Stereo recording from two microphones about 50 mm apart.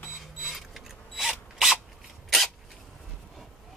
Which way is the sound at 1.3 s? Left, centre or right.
Centre.